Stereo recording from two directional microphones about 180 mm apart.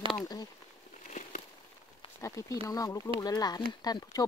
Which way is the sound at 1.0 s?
45° left (ahead or behind).